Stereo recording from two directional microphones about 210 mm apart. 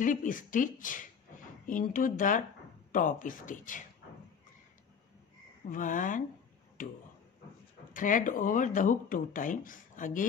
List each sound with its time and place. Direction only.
0.0 s speech: 40° left (ahead or behind)
5.7 s speech: 40° left (ahead or behind)
7.9 s speech: 40° left (ahead or behind)